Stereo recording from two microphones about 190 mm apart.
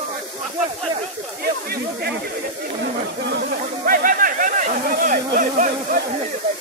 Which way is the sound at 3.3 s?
55° right (ahead or behind).